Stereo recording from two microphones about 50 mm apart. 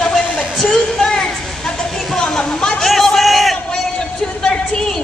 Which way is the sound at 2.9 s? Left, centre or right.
Centre.